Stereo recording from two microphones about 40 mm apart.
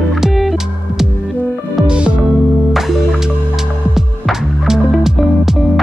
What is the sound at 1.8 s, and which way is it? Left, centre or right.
Music, right.